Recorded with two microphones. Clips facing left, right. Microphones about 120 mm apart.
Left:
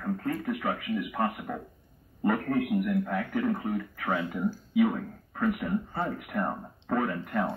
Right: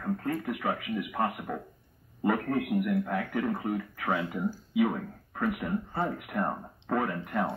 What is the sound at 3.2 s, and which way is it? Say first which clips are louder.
Speech: left 2 dB; centre (ahead or behind).